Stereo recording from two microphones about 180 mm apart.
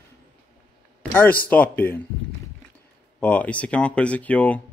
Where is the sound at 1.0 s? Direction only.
10° left (ahead or behind).